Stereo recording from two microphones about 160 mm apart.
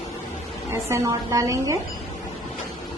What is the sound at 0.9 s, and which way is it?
Speech, 20° right (ahead or behind).